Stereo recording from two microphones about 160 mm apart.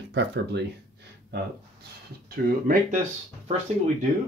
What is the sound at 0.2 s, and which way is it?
Speech, 90° right.